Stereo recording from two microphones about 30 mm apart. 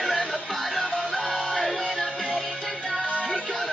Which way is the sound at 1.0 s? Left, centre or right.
Right.